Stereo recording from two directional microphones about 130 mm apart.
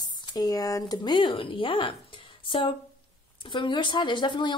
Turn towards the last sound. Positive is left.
turn(degrees=35)  # may be behind; listen again after turning